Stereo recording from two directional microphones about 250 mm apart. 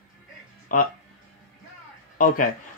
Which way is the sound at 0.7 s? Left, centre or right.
Left.